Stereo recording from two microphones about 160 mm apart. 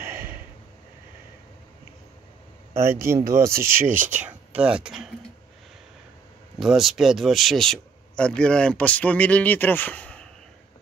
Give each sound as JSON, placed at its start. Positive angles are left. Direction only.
{"t": 0.0, "sound": "a sound", "side_deg": -15}
{"t": 2.7, "sound": "speech", "side_deg": -15}
{"t": 6.6, "sound": "speech", "side_deg": -5}